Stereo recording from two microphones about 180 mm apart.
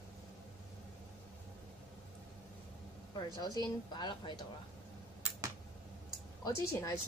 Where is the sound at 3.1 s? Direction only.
20° left (ahead or behind).